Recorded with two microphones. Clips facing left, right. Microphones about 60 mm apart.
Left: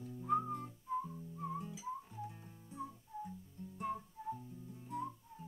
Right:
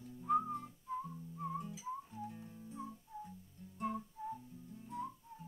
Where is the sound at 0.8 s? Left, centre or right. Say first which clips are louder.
Left 5 dB; centre.